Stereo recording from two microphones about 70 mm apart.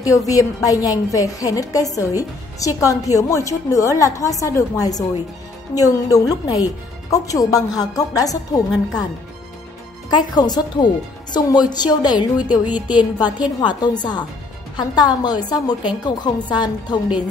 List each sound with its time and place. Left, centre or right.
0.3 s a woman's voice: left
10.0 s speech: left
12.6 s speech: right
12.9 s a woman's voice: left
14.8 s a woman's voice: left